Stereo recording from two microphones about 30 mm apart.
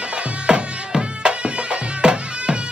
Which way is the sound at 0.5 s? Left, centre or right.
Right.